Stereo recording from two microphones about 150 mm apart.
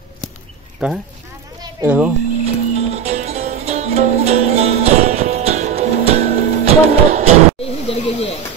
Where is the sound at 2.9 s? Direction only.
45° right (ahead or behind).